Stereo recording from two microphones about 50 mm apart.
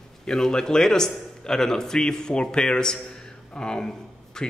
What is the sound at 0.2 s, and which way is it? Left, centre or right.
A man's voice, centre.